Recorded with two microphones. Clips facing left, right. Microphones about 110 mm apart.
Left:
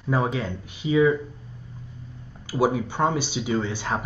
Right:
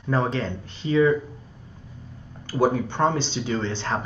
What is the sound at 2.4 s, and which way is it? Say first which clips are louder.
Speech: right 1 dB; 10° left (ahead or behind).